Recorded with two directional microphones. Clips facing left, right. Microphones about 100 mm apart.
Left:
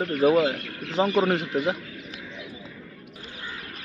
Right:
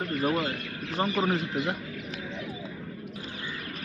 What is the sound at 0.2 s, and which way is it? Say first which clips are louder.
Speech: left 10 dB; 90° left.